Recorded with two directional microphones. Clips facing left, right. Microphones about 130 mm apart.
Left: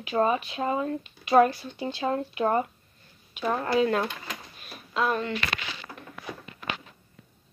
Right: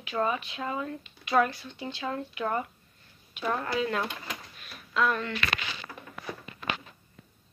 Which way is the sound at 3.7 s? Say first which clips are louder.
Left 6 dB; 35° left (ahead or behind).